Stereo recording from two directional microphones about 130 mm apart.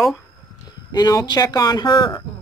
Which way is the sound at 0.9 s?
30° left (ahead or behind).